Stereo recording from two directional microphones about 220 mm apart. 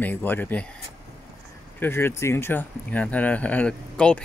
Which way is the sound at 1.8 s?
10° left (ahead or behind).